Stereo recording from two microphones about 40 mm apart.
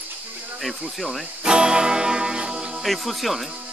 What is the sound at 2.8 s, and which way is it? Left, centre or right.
Speech, centre.